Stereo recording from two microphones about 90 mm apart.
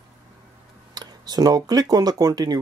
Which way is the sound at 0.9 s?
50° right (ahead or behind).